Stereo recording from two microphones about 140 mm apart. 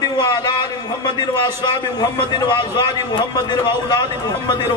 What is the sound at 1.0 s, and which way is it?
A man's voice, 30° left (ahead or behind).